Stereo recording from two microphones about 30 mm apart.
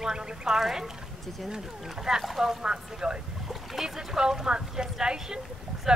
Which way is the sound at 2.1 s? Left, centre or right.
Centre.